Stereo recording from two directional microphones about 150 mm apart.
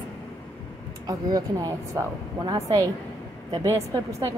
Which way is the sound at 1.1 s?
25° right (ahead or behind).